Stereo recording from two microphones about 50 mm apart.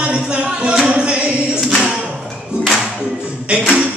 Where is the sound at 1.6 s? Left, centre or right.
Centre.